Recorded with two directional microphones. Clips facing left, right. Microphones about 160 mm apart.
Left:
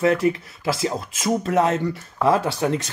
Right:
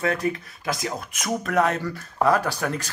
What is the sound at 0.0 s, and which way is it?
Speech, 25° left (ahead or behind).